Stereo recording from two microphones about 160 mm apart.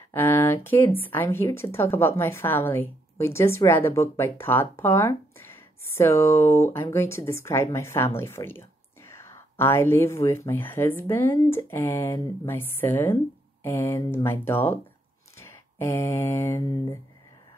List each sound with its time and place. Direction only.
0.1 s speech: 15° left (ahead or behind)